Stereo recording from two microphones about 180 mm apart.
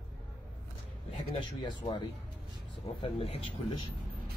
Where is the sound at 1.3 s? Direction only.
25° left (ahead or behind).